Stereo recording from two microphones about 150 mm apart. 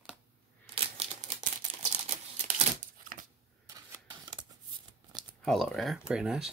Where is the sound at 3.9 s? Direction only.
30° right (ahead or behind).